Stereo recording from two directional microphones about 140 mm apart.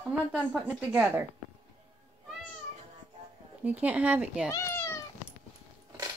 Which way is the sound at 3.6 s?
10° right (ahead or behind).